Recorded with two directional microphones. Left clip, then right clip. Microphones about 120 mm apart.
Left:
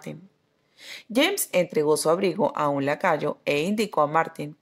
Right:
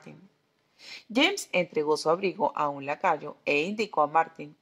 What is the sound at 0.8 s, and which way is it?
A woman's voice, 30° left (ahead or behind).